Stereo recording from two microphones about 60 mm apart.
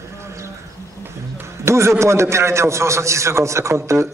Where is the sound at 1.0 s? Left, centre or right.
Right.